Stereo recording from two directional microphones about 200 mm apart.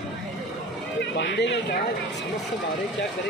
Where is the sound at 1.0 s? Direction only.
60° left (ahead or behind).